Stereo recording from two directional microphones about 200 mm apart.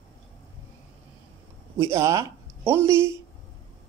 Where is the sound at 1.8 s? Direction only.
15° right (ahead or behind).